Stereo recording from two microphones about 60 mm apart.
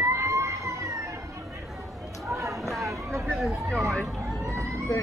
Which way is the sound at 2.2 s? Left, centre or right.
Right.